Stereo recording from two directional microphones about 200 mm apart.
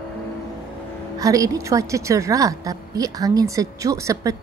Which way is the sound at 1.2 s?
15° right (ahead or behind).